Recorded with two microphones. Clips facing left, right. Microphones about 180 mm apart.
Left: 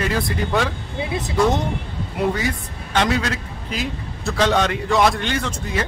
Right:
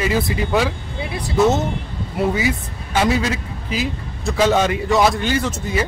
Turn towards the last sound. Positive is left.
turn(degrees=-5)  # may be behind; listen again after turning